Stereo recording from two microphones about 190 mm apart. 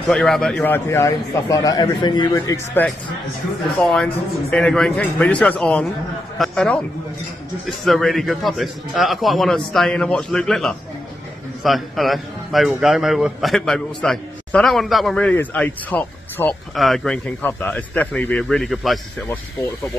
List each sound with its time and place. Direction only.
0.1 s a man's voice: 5° left (ahead or behind)